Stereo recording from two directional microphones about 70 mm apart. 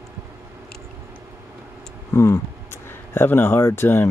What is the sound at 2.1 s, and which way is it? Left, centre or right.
Speech, left.